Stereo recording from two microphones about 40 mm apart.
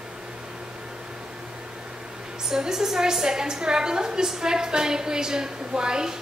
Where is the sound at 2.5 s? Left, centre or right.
Centre.